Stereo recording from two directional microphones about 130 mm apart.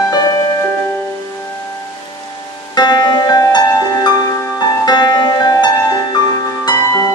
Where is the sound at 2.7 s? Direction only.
35° left (ahead or behind).